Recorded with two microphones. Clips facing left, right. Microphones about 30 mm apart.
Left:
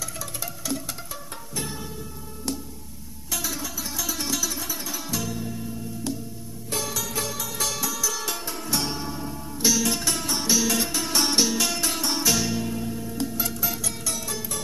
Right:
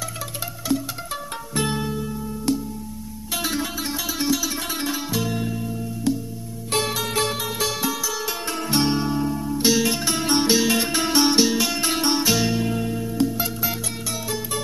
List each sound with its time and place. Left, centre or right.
1.5 s music: right
3.3 s music: right
4.0 s music: right
4.6 s music: right
6.7 s music: right
7.5 s music: centre
8.1 s music: centre
8.6 s music: right
10.2 s music: right
11.1 s music: centre
11.8 s music: right
13.0 s music: right